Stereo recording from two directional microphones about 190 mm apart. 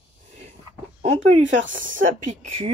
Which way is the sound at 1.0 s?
35° right (ahead or behind).